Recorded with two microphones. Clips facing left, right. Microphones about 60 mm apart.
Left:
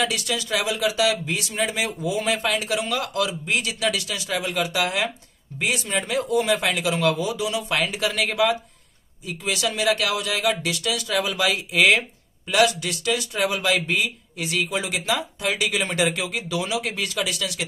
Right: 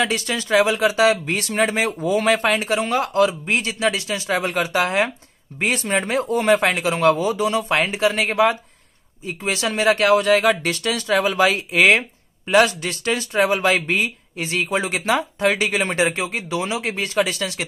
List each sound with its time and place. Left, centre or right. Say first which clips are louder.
0.0 s speech: right 3 dB; right